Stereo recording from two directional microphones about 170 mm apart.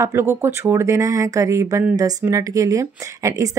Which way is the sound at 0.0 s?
15° right (ahead or behind).